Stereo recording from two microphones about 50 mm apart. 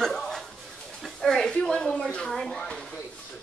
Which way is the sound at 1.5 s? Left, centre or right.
Centre.